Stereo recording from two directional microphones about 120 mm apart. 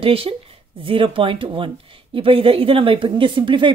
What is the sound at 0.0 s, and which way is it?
Speech, 50° right (ahead or behind).